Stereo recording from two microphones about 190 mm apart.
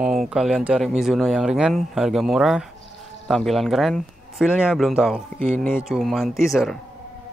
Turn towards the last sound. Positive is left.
turn(degrees=0)  # may be behind; listen again after turning